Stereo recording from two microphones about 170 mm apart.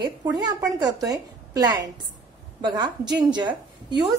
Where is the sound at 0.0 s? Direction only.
25° right (ahead or behind).